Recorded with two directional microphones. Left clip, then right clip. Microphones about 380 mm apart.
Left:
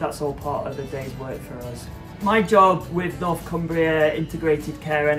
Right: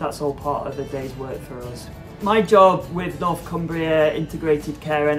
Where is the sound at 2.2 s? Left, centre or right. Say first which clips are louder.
Right 2 dB; centre.